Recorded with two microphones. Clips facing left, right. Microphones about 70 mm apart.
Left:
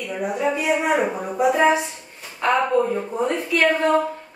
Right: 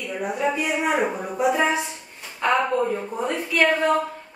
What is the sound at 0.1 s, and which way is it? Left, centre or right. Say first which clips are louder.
A woman's voice: left 2 dB; centre.